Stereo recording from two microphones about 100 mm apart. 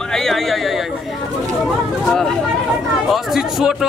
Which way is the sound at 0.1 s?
5° left (ahead or behind).